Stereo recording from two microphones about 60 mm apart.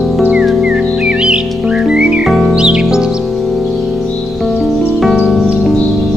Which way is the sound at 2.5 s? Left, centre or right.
Centre.